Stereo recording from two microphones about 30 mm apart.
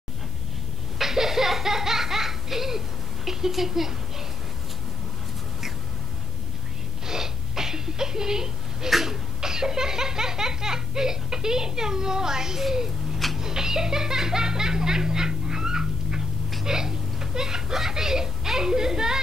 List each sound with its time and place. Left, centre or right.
0.9 s laughter: centre
3.3 s speech: centre
7.1 s a sound: centre
8.9 s laughter: centre
13.4 s music: right
16.6 s a sound: centre